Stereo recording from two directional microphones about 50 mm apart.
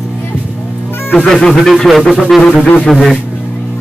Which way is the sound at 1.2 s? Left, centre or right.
Centre.